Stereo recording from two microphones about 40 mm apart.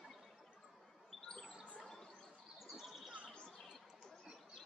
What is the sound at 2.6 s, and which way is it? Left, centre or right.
Bird, centre.